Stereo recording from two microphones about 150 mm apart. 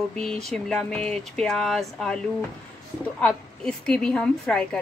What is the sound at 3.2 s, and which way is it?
Speech, 5° left (ahead or behind).